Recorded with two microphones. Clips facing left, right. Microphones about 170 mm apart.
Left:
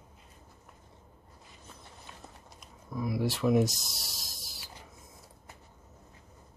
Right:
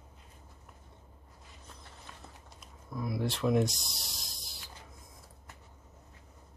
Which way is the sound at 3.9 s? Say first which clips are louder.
Left 1 dB; 45° left (ahead or behind).